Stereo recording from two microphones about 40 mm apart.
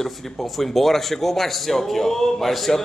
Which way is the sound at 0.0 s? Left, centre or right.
Centre.